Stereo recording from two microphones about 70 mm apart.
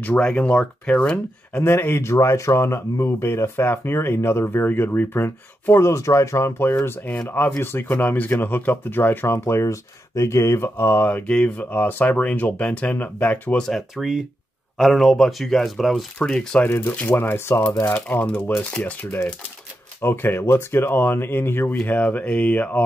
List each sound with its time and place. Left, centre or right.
0.0 s speech: centre
1.6 s speech: left
11.2 s speech: centre
13.7 s speech: centre
16.2 s speech: centre
16.6 s speech: left
20.0 s speech: left